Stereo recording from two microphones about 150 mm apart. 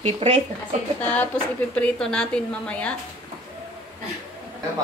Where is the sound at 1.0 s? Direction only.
10° left (ahead or behind).